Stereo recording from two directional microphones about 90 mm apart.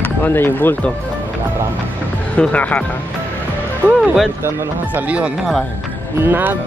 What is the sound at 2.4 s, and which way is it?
Speech, 15° left (ahead or behind).